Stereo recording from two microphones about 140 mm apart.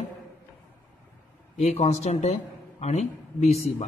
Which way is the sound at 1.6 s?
50° left (ahead or behind).